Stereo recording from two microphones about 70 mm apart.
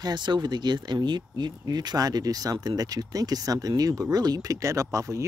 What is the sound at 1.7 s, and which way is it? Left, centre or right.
Speech, right.